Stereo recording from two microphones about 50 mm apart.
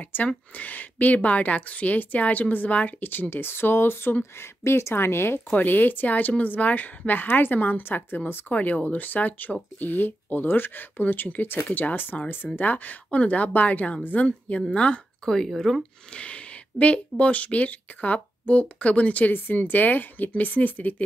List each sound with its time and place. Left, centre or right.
0.0 s a woman's voice: left
5.5 s a woman's voice: left
15.2 s speech: centre
16.1 s speech: left
19.3 s a woman's voice: left